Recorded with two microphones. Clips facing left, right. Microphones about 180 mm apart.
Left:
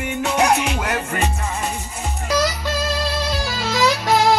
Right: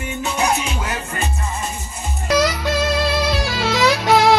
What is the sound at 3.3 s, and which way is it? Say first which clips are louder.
Music: right 3 dB; 70° right (ahead or behind).